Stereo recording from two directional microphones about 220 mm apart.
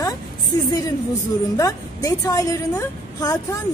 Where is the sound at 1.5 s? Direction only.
15° left (ahead or behind).